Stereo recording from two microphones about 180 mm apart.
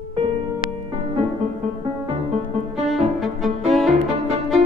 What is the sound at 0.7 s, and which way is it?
Music, 30° right (ahead or behind).